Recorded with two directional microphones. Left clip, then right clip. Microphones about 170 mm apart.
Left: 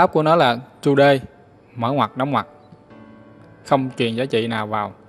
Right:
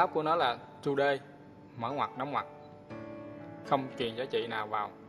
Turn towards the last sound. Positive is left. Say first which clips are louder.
# left 11 dB
turn(degrees=30)  # may be behind; listen again after turning